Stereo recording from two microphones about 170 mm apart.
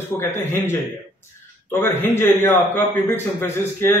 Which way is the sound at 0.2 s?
15° left (ahead or behind).